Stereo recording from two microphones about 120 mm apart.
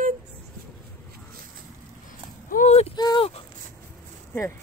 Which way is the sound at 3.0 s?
35° left (ahead or behind).